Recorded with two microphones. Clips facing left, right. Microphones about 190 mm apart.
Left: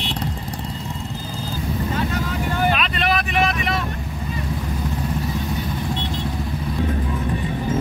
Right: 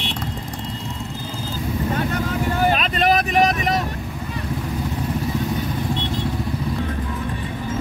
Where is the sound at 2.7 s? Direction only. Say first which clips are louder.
Right 3 dB; 40° right (ahead or behind).